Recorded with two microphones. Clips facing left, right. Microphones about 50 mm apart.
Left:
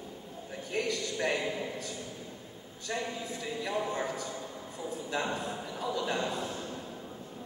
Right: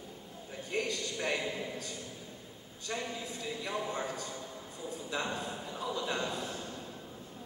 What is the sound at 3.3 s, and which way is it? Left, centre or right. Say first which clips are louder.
A man's voice: left 3 dB; left.